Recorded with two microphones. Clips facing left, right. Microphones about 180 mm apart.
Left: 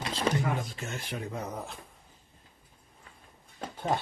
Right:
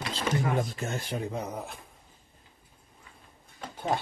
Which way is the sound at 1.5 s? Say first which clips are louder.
Right 1 dB; 5° right (ahead or behind).